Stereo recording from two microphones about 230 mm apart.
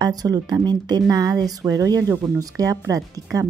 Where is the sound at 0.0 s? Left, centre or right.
Centre.